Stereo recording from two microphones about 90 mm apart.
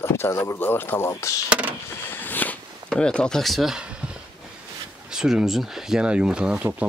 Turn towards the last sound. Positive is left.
turn(degrees=-15)  # may be behind; listen again after turning